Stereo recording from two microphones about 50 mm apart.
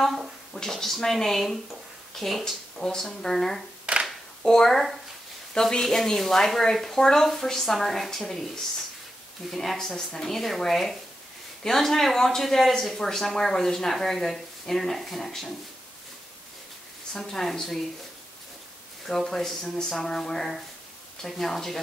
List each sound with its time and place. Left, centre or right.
0.0 s a sound: centre
0.6 s speech: centre
3.8 s clapping: right
4.4 s speech: centre
9.5 s speech: centre
17.2 s speech: centre
19.0 s speech: centre